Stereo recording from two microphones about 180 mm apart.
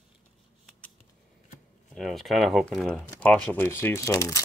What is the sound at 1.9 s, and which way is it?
Speech, centre (ahead or behind).